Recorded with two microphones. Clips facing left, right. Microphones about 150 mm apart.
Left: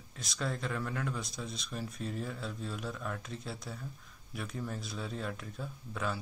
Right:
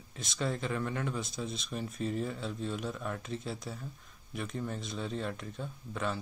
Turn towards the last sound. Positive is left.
turn(degrees=0)  # may be behind; listen again after turning